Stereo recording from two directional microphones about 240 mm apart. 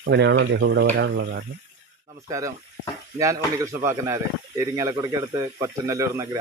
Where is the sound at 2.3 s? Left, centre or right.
Centre.